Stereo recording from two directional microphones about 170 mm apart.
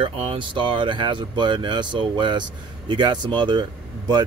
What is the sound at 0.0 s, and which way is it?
A man's voice, 30° right (ahead or behind).